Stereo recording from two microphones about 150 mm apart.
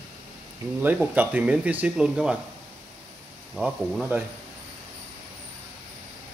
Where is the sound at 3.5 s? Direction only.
5° right (ahead or behind).